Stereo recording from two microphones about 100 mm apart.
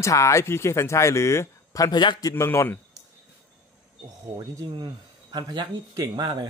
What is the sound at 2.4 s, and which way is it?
Speech, 25° left (ahead or behind).